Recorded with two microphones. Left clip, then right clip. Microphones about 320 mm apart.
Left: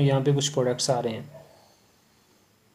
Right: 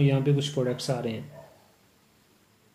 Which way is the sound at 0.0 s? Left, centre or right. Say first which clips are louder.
Left 2 dB; left.